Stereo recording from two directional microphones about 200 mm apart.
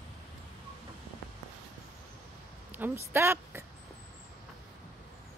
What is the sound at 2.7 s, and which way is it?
Speech, 10° right (ahead or behind).